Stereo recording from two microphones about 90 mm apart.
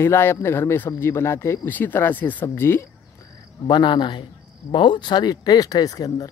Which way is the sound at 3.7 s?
55° left (ahead or behind).